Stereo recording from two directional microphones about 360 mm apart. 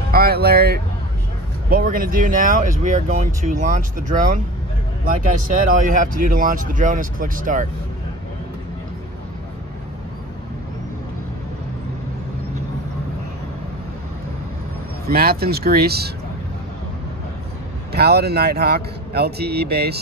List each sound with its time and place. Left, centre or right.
0.1 s speech: right
5.8 s speech: right
15.0 s speech: right
17.9 s speech: right